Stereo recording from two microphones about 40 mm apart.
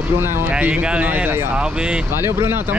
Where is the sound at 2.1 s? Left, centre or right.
Right.